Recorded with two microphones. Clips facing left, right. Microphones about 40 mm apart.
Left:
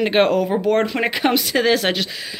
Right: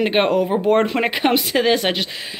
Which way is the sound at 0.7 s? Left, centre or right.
Right.